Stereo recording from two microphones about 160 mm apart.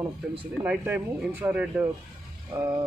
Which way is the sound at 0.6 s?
10° right (ahead or behind).